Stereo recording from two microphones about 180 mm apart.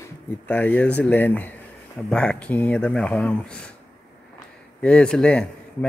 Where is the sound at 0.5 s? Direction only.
10° left (ahead or behind).